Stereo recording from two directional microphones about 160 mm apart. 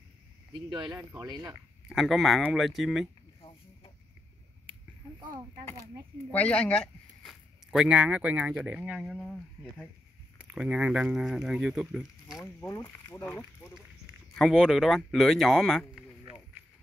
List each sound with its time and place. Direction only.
0.5 s speech: 30° right (ahead or behind)
1.5 s speech: centre (ahead or behind)
3.3 s a sound: 35° left (ahead or behind)
6.3 s speech: 10° left (ahead or behind)
12.5 s speech: 20° left (ahead or behind)
14.3 s speech: 5° left (ahead or behind)